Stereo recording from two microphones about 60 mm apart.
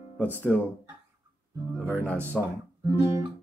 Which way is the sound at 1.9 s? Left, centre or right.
Left.